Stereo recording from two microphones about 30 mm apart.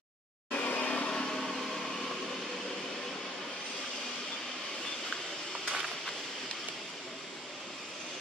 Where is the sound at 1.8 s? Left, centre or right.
Centre.